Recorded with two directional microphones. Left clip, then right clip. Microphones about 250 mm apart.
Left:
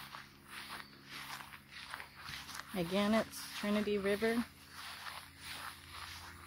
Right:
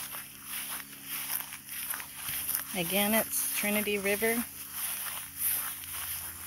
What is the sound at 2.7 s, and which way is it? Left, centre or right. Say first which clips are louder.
Speech: right 5 dB; centre.